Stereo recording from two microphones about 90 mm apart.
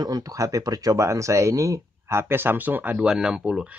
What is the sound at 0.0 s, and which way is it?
Speech, 45° right (ahead or behind).